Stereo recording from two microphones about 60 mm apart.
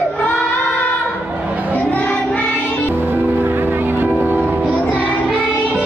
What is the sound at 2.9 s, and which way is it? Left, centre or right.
Music, right.